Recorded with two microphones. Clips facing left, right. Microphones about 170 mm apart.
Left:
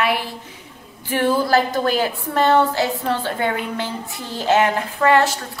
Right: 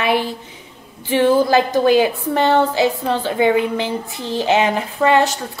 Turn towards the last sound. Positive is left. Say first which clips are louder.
# right 1 dB
turn(degrees=-15)  # may be behind; listen again after turning